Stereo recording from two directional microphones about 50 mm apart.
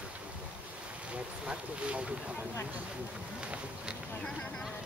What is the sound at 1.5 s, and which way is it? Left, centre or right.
Speech, right.